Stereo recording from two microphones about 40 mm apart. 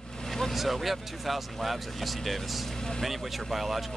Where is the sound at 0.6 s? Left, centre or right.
Centre.